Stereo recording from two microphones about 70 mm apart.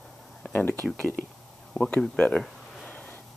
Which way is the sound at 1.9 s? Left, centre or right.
Centre.